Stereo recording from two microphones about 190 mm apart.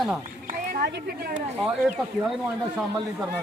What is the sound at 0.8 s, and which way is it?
Speech, 60° right (ahead or behind).